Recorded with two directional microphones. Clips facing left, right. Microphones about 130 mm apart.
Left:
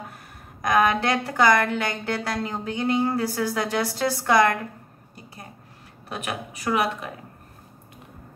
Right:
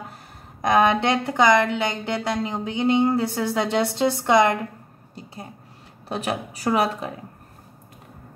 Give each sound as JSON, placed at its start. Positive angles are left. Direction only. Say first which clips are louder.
{"t": 0.6, "sound": "a woman's voice", "louder": "right 2 dB", "side_deg": -25}